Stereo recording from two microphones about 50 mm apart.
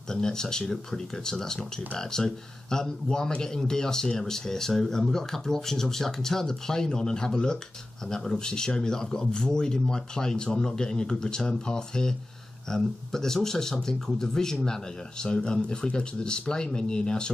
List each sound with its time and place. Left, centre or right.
0.1 s speech: centre